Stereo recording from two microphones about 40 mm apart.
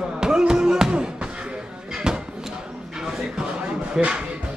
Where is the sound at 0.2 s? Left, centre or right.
Centre.